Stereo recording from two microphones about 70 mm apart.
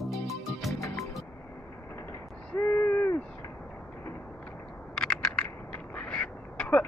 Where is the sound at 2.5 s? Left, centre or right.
Left.